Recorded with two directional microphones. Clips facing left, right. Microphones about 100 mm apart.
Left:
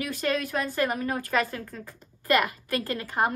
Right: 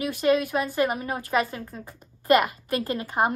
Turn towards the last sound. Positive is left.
turn(degrees=-20)  # may be behind; listen again after turning